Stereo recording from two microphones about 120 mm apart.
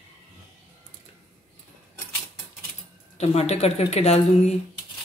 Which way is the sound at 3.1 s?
60° left (ahead or behind).